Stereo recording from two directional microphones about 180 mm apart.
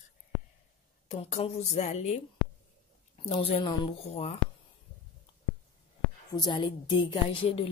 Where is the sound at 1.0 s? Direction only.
35° left (ahead or behind).